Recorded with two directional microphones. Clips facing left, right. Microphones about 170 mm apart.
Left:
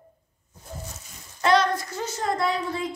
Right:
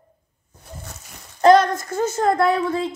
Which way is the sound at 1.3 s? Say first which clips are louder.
Right 7 dB; 50° right (ahead or behind).